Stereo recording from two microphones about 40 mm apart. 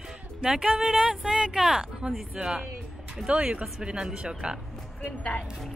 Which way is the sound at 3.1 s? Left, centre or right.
Right.